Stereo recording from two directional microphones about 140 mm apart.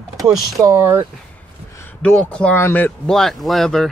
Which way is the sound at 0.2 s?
25° right (ahead or behind).